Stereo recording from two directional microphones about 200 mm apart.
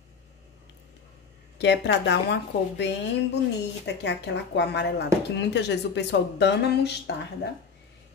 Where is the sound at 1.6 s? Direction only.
60° left (ahead or behind).